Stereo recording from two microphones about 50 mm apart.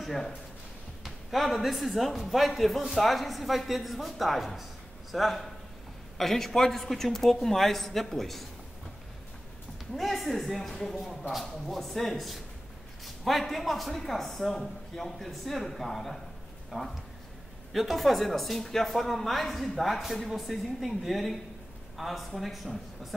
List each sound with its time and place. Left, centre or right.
0.0 s speech: centre
9.9 s speech: centre